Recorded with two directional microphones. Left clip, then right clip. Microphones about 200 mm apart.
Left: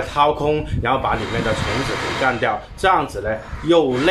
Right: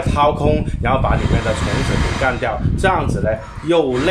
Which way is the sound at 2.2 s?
5° right (ahead or behind).